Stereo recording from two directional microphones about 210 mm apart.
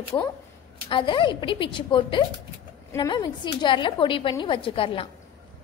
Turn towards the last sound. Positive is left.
turn(degrees=25)  # may be behind; listen again after turning